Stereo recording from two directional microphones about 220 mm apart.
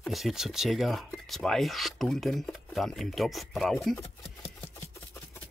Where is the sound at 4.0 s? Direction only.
25° left (ahead or behind).